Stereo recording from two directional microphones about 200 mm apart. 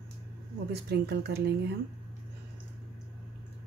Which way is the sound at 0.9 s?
55° right (ahead or behind).